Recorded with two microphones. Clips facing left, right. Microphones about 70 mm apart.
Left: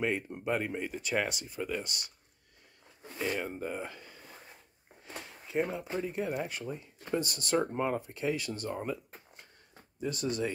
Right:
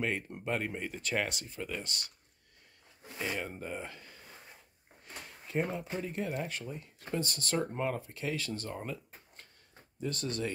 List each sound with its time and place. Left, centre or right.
0.0 s speech: centre
3.3 s speech: centre
5.2 s speech: centre